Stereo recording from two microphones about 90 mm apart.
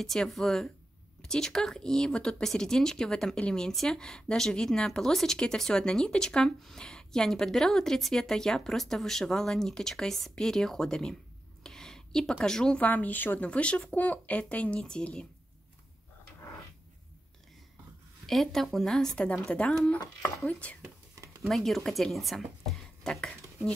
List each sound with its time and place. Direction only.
0.0 s speech: 5° left (ahead or behind)
11.6 s a sound: 5° left (ahead or behind)
12.8 s speech: 20° left (ahead or behind)
18.2 s speech: 5° left (ahead or behind)
21.4 s speech: centre (ahead or behind)